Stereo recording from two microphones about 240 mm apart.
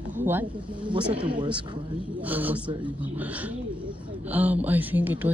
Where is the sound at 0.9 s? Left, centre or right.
Right.